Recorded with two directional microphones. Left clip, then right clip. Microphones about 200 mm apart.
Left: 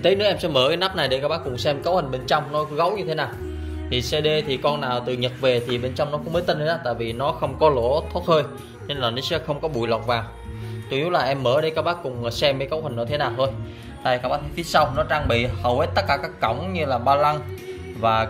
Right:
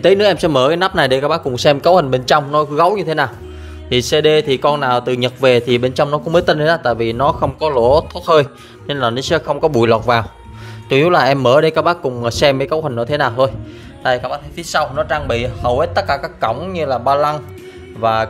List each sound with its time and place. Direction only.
0.0 s speech: 40° right (ahead or behind)
14.0 s speech: 25° right (ahead or behind)